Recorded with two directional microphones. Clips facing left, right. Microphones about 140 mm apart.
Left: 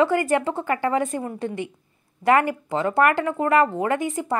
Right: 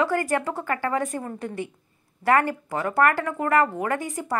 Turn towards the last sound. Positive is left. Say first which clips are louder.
# left 4 dB
turn(degrees=25)  # may be behind; listen again after turning